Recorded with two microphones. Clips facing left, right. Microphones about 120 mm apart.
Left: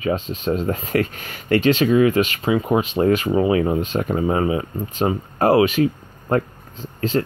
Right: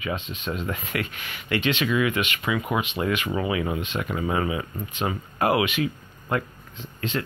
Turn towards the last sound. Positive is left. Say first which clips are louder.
# left 8 dB
turn(degrees=35)  # may be behind; listen again after turning